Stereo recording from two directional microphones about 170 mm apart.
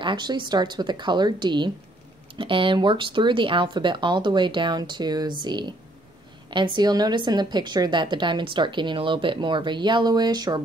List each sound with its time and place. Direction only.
0.0 s a woman's voice: 25° right (ahead or behind)